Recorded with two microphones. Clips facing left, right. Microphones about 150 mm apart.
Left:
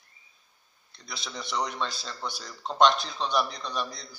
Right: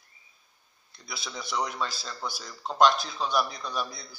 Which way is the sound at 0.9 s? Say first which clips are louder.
Even; 5° right (ahead or behind).